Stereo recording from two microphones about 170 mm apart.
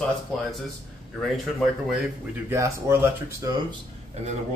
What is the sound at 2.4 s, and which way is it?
Speech, 15° right (ahead or behind).